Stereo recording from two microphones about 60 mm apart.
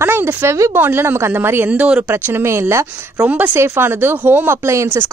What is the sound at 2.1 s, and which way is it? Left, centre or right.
Speech, right.